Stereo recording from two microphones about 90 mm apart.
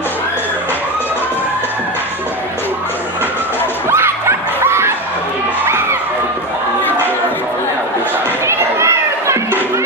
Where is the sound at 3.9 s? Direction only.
25° right (ahead or behind).